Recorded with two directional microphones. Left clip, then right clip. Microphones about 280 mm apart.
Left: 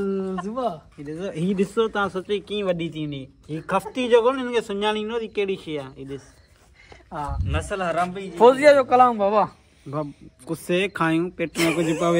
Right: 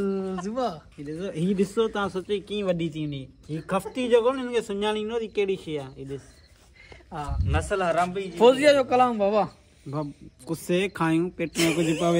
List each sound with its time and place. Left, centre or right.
0.0 s a sound: centre
0.7 s speech: centre
7.1 s speech: centre
7.4 s a man's voice: right
8.4 s speech: centre